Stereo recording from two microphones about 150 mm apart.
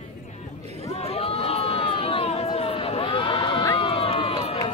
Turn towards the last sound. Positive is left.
turn(degrees=40)  # may be behind; listen again after turning